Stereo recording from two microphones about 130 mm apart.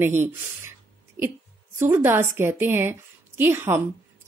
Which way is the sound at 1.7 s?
15° right (ahead or behind).